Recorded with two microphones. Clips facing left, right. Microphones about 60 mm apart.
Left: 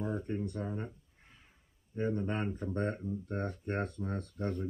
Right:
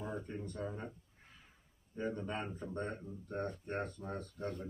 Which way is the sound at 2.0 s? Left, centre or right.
Left.